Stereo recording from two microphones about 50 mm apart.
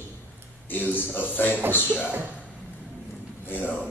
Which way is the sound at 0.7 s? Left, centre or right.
Left.